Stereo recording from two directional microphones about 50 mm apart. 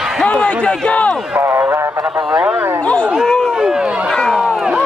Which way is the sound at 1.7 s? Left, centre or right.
Right.